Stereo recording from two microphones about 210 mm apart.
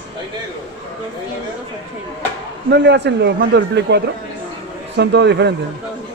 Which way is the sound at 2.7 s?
55° right (ahead or behind).